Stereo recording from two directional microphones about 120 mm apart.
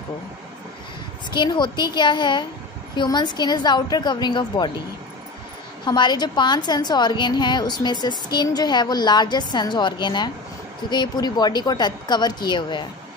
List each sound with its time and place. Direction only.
1.3 s a woman's voice: 40° left (ahead or behind)
5.9 s a woman's voice: 40° left (ahead or behind)